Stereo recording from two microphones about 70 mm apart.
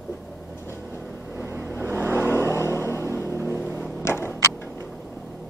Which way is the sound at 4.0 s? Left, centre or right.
Left.